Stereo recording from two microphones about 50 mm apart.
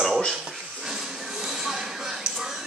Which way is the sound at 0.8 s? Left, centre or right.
Centre.